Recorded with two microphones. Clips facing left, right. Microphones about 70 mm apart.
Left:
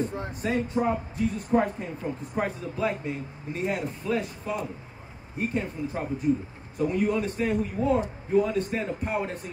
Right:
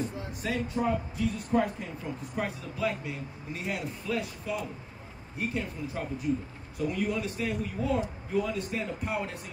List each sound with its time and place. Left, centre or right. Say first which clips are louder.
0.0 s a man's voice: left 4 dB; left